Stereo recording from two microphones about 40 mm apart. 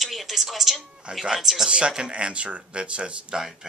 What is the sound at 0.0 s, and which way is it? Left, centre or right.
Speech, centre.